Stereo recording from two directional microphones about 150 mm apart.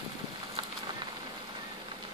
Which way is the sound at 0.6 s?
30° right (ahead or behind).